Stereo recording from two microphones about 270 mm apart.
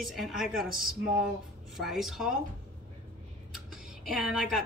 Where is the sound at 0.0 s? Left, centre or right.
Centre.